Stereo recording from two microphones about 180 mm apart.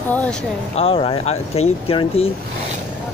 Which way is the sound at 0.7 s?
30° left (ahead or behind).